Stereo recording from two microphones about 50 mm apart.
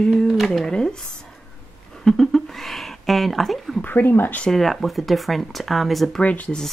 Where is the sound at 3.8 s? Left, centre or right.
Left.